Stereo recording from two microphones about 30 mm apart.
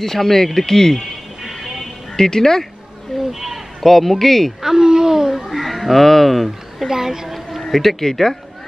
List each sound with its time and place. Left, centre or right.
0.0 s speech: centre
1.4 s music: centre
2.1 s speech: centre
3.2 s a woman's voice: centre
3.8 s speech: centre
4.6 s speech: centre
5.5 s a sound: centre
6.9 s a woman's voice: centre
7.6 s speech: centre